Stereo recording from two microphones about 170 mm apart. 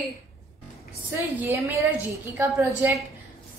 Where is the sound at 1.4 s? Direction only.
15° right (ahead or behind).